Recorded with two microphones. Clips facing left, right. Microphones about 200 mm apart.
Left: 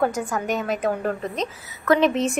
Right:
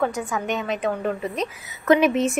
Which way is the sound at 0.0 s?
Centre (ahead or behind).